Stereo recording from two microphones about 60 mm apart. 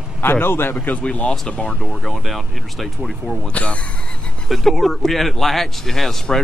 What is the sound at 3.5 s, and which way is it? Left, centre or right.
Speech, left.